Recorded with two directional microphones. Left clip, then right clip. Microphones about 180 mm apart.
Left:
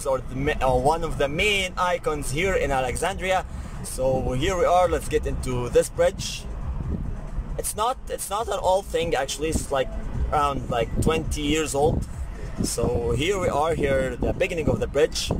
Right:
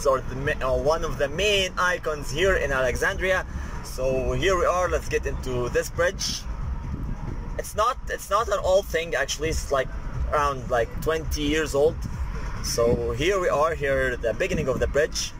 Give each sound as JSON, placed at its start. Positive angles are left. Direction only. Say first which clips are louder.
{"t": 0.0, "sound": "speech", "louder": "right 2 dB", "side_deg": 20}
{"t": 7.5, "sound": "speech", "louder": "right 1 dB", "side_deg": 25}